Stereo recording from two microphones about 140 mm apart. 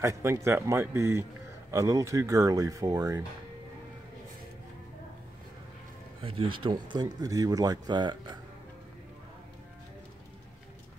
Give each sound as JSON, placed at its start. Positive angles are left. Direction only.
{"t": 0.0, "sound": "speech", "side_deg": -20}
{"t": 6.2, "sound": "speech", "side_deg": -40}